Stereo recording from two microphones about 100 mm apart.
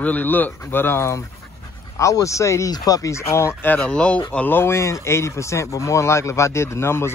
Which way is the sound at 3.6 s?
15° left (ahead or behind).